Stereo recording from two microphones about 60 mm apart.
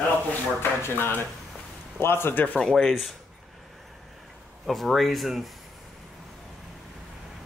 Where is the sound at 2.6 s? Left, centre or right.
Centre.